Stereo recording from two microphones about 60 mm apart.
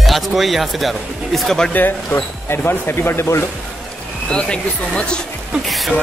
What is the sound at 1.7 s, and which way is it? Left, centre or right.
Speech, left.